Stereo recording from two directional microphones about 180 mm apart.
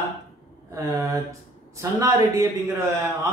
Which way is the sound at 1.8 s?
15° right (ahead or behind).